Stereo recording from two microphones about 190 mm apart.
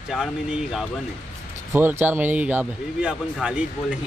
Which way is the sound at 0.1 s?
5° right (ahead or behind).